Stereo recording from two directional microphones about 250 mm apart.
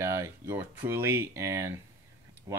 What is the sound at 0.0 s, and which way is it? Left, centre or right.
Speech, centre.